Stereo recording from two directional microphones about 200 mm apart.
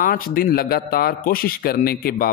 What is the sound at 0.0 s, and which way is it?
A man's voice, 45° left (ahead or behind).